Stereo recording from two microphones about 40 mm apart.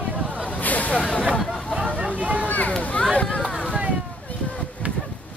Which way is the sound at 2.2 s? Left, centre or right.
Right.